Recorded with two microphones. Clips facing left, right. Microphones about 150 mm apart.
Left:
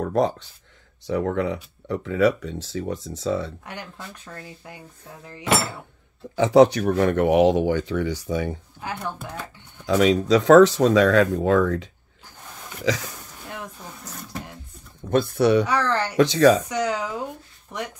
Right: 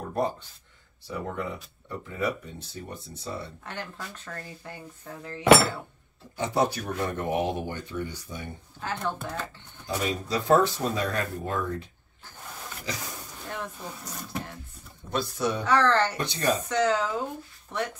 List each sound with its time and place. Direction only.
0.0 s speech: 90° left
1.0 s speech: 80° left
3.6 s speech: 15° left (ahead or behind)
6.3 s speech: 90° left
8.8 s speech: 10° left (ahead or behind)
9.8 s speech: 90° left
15.0 s speech: 55° left (ahead or behind)
15.6 s speech: 10° left (ahead or behind)
16.2 s speech: 90° left
16.6 s speech: 10° left (ahead or behind)